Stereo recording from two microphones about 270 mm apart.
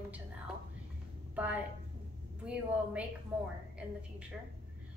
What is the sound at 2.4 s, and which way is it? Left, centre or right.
A woman's voice, centre.